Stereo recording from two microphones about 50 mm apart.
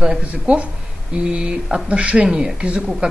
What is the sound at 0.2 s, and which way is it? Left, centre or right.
A man's voice, right.